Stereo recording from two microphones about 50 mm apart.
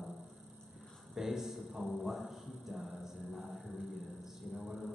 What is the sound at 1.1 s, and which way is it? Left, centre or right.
A man's voice, centre.